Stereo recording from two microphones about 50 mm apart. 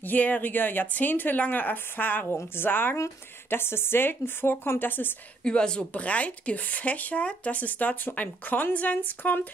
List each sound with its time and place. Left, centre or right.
0.0 s speech: left
2.3 s speech: left
5.4 s speech: centre